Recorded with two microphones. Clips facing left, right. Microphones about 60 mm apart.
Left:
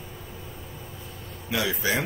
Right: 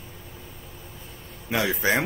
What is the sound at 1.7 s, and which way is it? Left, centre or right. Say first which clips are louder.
Speech: right 4 dB; right.